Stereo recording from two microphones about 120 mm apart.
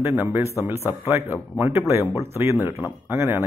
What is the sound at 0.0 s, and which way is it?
A man's voice, 15° right (ahead or behind).